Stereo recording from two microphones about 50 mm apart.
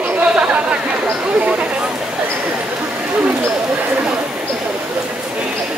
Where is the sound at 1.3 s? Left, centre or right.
Right.